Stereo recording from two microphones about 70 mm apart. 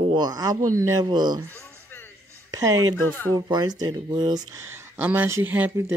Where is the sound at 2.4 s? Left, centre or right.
Right.